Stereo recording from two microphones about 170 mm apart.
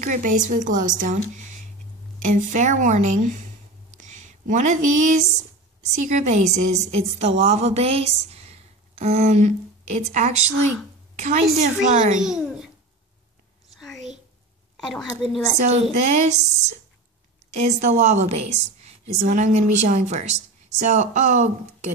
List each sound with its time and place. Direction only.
0.0 s a woman's voice: 50° right (ahead or behind)
2.2 s a woman's voice: 50° right (ahead or behind)
3.9 s a sound: 45° right (ahead or behind)
6.0 s a woman's voice: 45° right (ahead or behind)
12.2 s a child's voice: 5° right (ahead or behind)
13.9 s a sound: 45° right (ahead or behind)
15.6 s a woman's voice: 40° right (ahead or behind)